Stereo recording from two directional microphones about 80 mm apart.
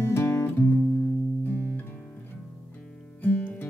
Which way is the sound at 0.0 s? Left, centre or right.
Left.